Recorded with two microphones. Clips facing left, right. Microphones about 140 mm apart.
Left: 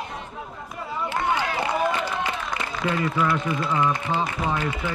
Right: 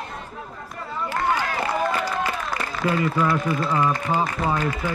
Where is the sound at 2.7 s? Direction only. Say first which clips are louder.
Right 3 dB; 5° right (ahead or behind).